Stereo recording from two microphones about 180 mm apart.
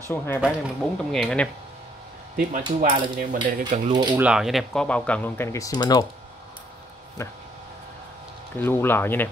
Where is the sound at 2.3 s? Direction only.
50° right (ahead or behind).